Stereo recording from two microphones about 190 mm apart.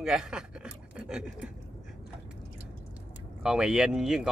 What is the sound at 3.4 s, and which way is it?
Speech, 5° right (ahead or behind).